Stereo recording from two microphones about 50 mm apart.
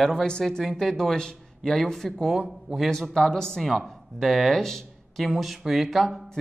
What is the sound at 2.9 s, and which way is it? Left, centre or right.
Speech, centre.